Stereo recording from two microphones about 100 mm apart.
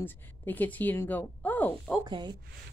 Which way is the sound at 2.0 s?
50° right (ahead or behind).